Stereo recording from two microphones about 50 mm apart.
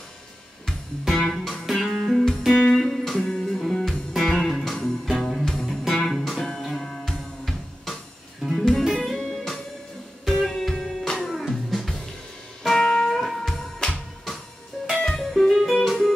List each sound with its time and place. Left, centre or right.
0.7 s music: centre
1.5 s music: centre
2.5 s music: centre
2.8 s music: centre
5.1 s music: centre